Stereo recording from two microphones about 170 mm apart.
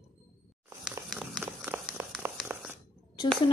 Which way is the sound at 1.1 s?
Centre (ahead or behind).